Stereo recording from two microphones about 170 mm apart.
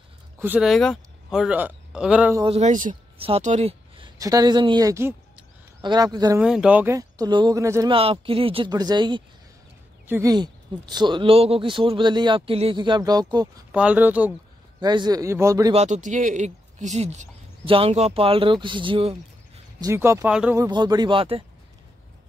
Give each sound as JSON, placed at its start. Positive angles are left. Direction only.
{"t": 0.4, "sound": "speech", "side_deg": -5}
{"t": 2.4, "sound": "speech", "side_deg": -40}
{"t": 3.2, "sound": "speech", "side_deg": -35}
{"t": 4.0, "sound": "a man's voice", "side_deg": -20}
{"t": 6.4, "sound": "speech", "side_deg": -5}
{"t": 7.9, "sound": "speech", "side_deg": -35}
{"t": 10.0, "sound": "speech", "side_deg": -15}
{"t": 10.3, "sound": "a man's voice", "side_deg": -25}
{"t": 13.7, "sound": "speech", "side_deg": -5}
{"t": 14.8, "sound": "a man's voice", "side_deg": -25}
{"t": 15.7, "sound": "speech", "side_deg": -45}
{"t": 19.8, "sound": "a man's voice", "side_deg": -15}